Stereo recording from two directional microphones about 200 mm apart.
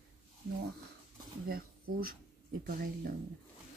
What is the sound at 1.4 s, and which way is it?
Speech, 45° right (ahead or behind).